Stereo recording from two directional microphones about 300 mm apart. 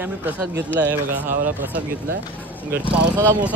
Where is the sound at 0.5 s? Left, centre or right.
Right.